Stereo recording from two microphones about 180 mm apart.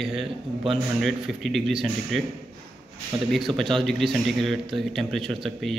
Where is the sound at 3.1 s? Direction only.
25° right (ahead or behind).